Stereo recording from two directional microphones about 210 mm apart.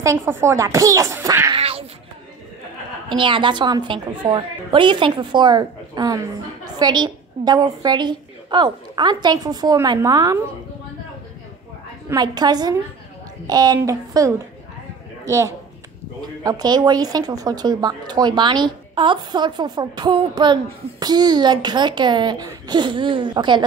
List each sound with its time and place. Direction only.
0.0 s a child's voice: 10° right (ahead or behind)
1.6 s cat: 30° right (ahead or behind)
3.1 s a woman's voice: 25° right (ahead or behind)
12.1 s a woman's voice: 20° right (ahead or behind)